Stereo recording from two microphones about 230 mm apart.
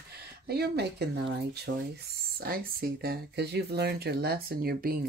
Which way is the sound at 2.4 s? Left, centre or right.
Right.